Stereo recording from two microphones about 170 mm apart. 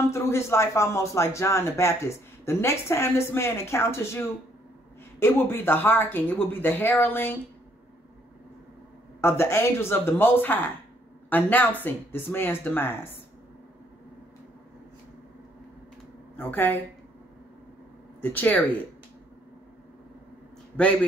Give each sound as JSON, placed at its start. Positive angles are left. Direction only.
{"t": 0.1, "sound": "a man's voice", "side_deg": 15}
{"t": 5.2, "sound": "a man's voice", "side_deg": 15}
{"t": 9.2, "sound": "a man's voice", "side_deg": 15}
{"t": 16.3, "sound": "a man's voice", "side_deg": 10}
{"t": 18.2, "sound": "a man's voice", "side_deg": 10}